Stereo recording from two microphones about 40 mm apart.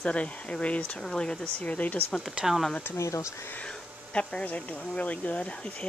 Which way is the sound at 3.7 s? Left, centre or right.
Left.